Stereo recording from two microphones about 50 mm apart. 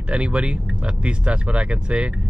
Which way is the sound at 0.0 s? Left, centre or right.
Right.